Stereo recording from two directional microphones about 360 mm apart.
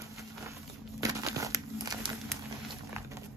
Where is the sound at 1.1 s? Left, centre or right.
Centre.